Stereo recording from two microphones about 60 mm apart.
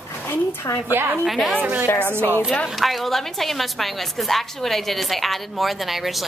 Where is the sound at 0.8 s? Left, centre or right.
Right.